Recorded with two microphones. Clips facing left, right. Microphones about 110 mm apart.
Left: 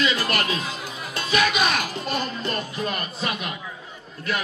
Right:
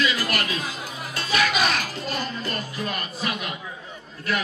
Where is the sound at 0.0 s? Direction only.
25° left (ahead or behind).